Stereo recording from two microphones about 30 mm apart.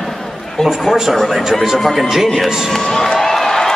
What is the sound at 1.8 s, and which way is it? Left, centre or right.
Speech, centre.